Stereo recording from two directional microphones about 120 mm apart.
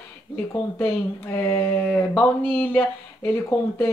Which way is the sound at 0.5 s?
20° left (ahead or behind).